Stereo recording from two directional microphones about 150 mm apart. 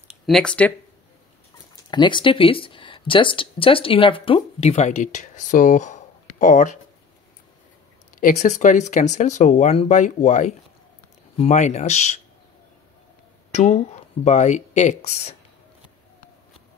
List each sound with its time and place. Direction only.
0.1 s speech: 5° left (ahead or behind)
1.9 s speech: 30° left (ahead or behind); by 6.8 s 55° left (ahead or behind)
8.2 s speech: 55° left (ahead or behind)
13.5 s a sound: 55° left (ahead or behind)
14.2 s speech: 50° left (ahead or behind)